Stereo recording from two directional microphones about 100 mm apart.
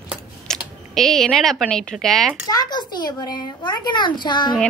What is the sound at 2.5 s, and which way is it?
A child's voice, 45° left (ahead or behind).